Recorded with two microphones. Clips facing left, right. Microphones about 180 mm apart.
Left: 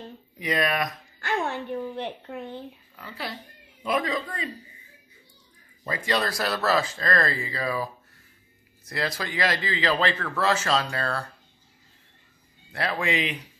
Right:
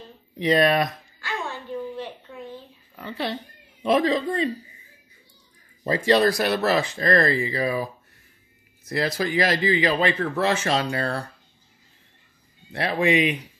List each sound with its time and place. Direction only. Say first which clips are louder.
0.4 s speech: right 7 dB; 30° right (ahead or behind)
1.2 s a sound: left 4 dB; 60° left (ahead or behind)
3.0 s a man's voice: right 7 dB; 25° right (ahead or behind)
5.9 s a man's voice: right 8 dB; 25° right (ahead or behind)
12.7 s a man's voice: right 6 dB; 20° right (ahead or behind)